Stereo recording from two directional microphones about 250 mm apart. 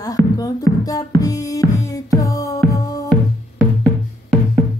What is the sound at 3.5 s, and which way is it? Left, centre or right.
Music, centre.